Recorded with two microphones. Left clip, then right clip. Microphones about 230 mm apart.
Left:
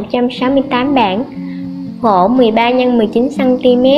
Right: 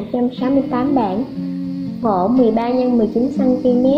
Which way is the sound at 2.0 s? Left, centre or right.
Left.